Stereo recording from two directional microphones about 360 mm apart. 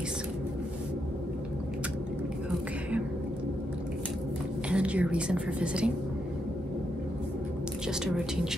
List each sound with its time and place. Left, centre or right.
4.6 s a woman's voice: centre